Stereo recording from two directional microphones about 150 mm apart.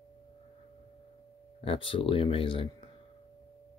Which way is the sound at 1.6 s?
35° left (ahead or behind).